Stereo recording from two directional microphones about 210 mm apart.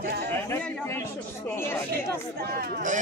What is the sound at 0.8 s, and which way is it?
Speech, 10° left (ahead or behind).